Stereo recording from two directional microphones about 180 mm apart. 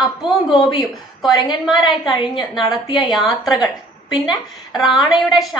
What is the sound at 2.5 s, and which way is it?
Speech, 25° left (ahead or behind).